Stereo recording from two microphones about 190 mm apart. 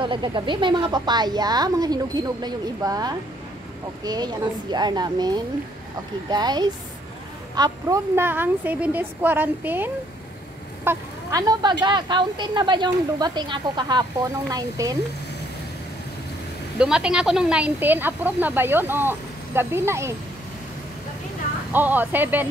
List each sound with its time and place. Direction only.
0.0 s a woman's voice: 25° right (ahead or behind)
16.7 s a woman's voice: 5° right (ahead or behind)
21.7 s a woman's voice: 10° right (ahead or behind)